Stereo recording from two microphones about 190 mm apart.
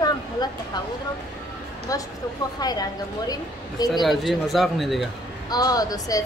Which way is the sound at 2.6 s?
20° left (ahead or behind).